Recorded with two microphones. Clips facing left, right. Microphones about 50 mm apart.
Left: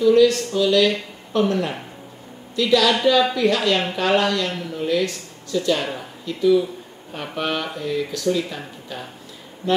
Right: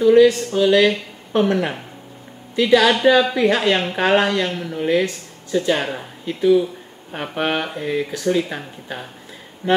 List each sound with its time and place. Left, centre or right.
0.0 s speech: right